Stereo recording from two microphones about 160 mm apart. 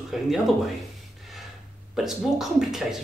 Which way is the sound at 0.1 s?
Centre (ahead or behind).